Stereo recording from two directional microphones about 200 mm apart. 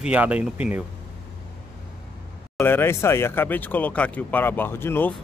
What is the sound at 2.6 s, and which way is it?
Speech, 10° left (ahead or behind).